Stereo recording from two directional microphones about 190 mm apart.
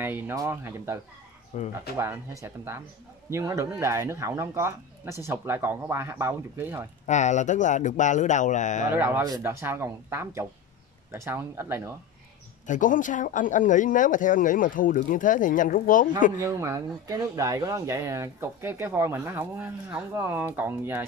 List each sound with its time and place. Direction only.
0.0 s speech: 10° right (ahead or behind)
1.5 s speech: 35° left (ahead or behind)
2.0 s speech: 15° right (ahead or behind)
7.1 s speech: 40° left (ahead or behind)
8.9 s speech: 10° right (ahead or behind)
12.6 s speech: 40° left (ahead or behind)
16.3 s speech: 15° right (ahead or behind)